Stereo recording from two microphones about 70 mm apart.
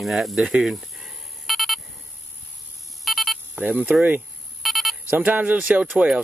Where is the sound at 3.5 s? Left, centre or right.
Right.